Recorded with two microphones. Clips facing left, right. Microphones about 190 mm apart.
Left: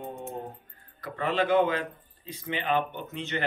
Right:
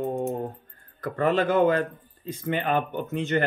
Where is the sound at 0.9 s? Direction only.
50° right (ahead or behind).